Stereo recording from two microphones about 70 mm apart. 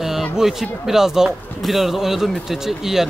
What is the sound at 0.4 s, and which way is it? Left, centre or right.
Speech, centre.